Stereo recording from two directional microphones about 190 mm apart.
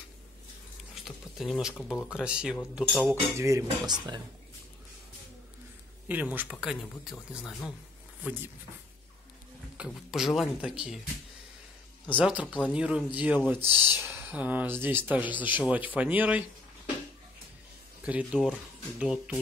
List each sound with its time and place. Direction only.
0.9 s speech: centre (ahead or behind)
3.3 s speech: 15° right (ahead or behind)
6.0 s speech: 10° right (ahead or behind)
9.8 s speech: centre (ahead or behind)
12.1 s speech: 5° right (ahead or behind)
18.0 s speech: 5° right (ahead or behind)